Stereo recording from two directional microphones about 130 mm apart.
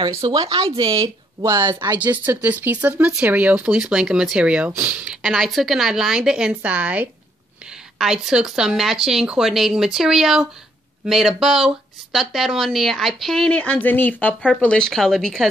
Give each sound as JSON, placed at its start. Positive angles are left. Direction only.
{"t": 0.0, "sound": "speech", "side_deg": -25}
{"t": 0.7, "sound": "speech", "side_deg": -40}
{"t": 0.9, "sound": "speech", "side_deg": -25}
{"t": 1.7, "sound": "speech", "side_deg": -35}
{"t": 2.0, "sound": "speech", "side_deg": -10}